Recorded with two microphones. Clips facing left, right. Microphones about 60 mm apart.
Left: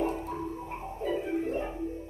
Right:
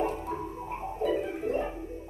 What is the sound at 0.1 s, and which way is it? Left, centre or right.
Music, right.